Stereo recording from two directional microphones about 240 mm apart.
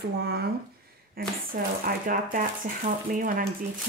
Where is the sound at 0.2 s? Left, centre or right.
Right.